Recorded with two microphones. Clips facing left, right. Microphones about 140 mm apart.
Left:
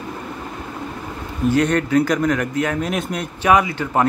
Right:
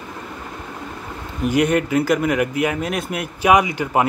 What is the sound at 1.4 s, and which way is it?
Speech, 15° right (ahead or behind).